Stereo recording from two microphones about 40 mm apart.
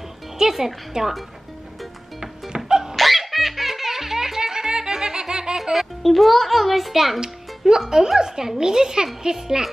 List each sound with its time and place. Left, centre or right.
0.4 s speech: centre
2.5 s music: centre
3.0 s music: centre
5.6 s a child's voice: centre
7.2 s speech: centre